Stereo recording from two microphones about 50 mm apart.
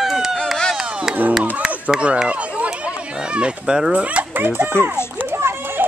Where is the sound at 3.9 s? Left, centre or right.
Right.